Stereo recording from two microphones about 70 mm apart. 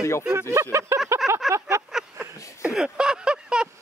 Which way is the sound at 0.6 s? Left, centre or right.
Right.